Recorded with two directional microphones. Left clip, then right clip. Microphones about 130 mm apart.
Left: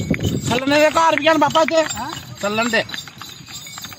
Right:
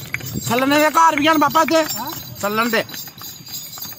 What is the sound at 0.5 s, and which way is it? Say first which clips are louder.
Speech: even; centre (ahead or behind).